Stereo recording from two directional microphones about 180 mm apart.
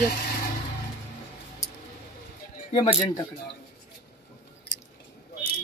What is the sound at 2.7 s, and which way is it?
Speech, 35° left (ahead or behind).